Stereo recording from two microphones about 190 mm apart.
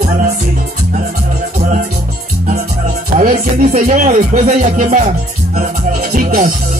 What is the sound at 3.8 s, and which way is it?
Speech, 40° right (ahead or behind).